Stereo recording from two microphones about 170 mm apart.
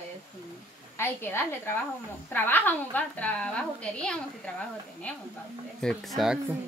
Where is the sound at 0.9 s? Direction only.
15° left (ahead or behind).